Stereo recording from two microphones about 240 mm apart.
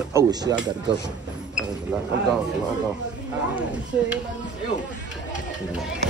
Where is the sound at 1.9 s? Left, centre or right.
Centre.